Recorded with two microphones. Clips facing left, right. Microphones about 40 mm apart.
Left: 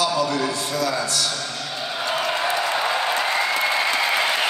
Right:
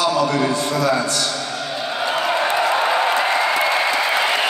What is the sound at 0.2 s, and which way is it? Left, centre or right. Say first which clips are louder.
Speech: right 4 dB; right.